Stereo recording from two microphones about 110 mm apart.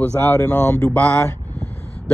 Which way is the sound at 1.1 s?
25° left (ahead or behind).